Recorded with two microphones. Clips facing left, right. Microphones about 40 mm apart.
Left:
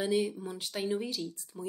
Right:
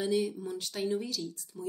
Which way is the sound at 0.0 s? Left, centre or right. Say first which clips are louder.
Even; centre.